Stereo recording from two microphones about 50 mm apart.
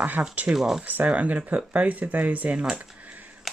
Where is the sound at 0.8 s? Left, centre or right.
Right.